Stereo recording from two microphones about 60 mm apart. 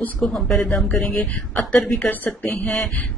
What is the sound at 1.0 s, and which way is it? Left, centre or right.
Speech, centre.